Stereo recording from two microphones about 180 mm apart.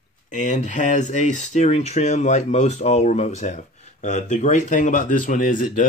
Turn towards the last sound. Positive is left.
turn(degrees=50)  # may be behind; listen again after turning